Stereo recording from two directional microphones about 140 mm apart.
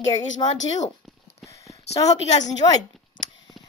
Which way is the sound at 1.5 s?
20° left (ahead or behind).